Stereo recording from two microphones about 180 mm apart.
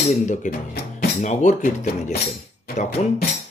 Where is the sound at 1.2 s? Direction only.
45° left (ahead or behind).